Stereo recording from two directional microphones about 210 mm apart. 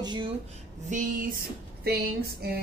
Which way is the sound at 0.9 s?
35° right (ahead or behind).